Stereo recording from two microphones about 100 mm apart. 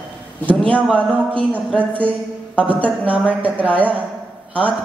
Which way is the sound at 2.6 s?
15° right (ahead or behind).